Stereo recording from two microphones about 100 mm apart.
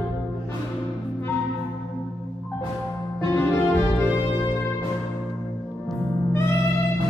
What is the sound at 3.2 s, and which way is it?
Music, 25° left (ahead or behind).